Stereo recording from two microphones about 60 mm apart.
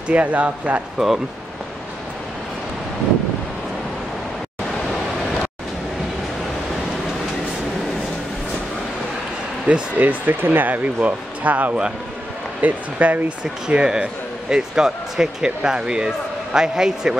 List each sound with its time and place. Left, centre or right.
0.1 s speech: right
0.9 s speech: centre
9.9 s speech: right
13.4 s speech: centre